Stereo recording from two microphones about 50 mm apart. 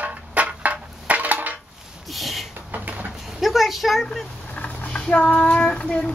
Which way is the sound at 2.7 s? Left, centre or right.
Right.